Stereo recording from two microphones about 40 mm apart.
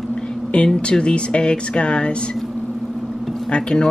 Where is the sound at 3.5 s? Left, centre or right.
Left.